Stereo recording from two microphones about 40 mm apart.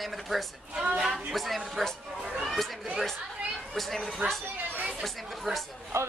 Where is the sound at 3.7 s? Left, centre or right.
Centre.